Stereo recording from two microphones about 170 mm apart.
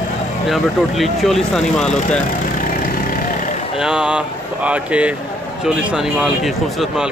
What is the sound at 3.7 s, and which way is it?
Speech, 5° right (ahead or behind).